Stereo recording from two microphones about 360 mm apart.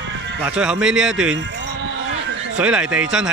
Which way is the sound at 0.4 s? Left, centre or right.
Centre.